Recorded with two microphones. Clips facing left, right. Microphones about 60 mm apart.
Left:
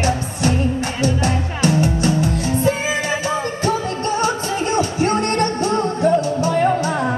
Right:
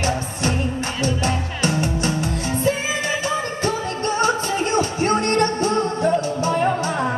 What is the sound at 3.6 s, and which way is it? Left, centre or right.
Music, right.